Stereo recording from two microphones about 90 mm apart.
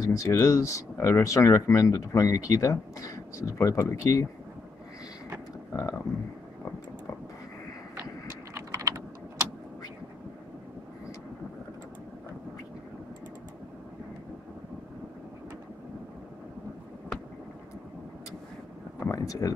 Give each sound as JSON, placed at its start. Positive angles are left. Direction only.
{"t": 0.0, "sound": "speech", "side_deg": 35}
{"t": 5.7, "sound": "speech", "side_deg": 45}
{"t": 7.9, "sound": "typing", "side_deg": -30}
{"t": 19.1, "sound": "speech", "side_deg": 40}